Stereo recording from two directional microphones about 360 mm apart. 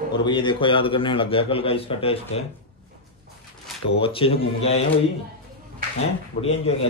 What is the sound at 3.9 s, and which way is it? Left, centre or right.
Speech, centre.